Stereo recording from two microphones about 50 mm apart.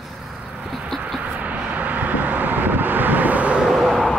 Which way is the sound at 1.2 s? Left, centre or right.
Right.